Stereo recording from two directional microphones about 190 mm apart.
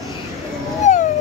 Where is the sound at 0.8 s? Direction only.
35° left (ahead or behind).